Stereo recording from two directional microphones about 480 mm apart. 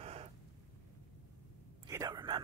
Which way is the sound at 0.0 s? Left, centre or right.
Centre.